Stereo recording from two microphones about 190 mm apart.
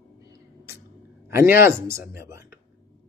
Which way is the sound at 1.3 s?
15° right (ahead or behind).